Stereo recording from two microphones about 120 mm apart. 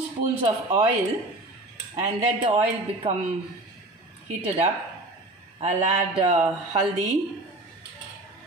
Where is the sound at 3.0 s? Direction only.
60° right (ahead or behind).